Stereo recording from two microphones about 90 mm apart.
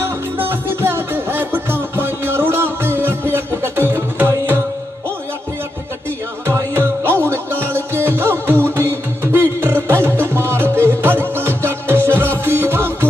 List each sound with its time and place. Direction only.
0.0 s music: 25° right (ahead or behind)
6.4 s music: 30° right (ahead or behind)